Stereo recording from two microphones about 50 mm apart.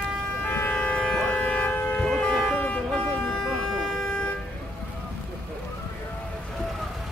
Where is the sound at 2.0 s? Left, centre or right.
Centre.